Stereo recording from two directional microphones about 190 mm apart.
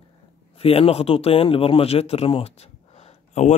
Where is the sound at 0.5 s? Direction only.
30° left (ahead or behind).